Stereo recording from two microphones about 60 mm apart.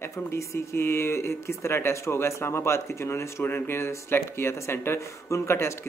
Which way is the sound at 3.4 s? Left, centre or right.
Left.